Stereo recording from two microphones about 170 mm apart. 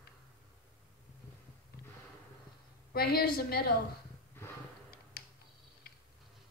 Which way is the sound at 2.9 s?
65° left (ahead or behind).